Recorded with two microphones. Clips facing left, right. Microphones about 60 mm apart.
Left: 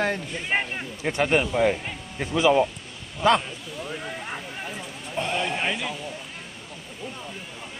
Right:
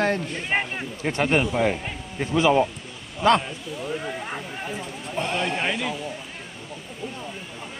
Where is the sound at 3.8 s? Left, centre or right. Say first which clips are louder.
Right 4 dB; centre.